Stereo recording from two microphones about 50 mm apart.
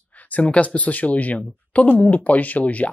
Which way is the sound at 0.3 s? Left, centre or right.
Left.